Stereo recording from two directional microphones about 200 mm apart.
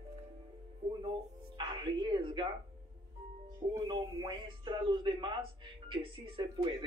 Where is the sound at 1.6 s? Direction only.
20° right (ahead or behind).